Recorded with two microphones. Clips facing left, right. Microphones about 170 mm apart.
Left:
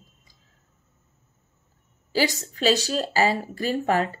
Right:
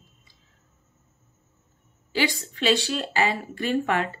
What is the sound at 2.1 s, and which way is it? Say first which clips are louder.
A woman's voice: left 2 dB; 40° left (ahead or behind).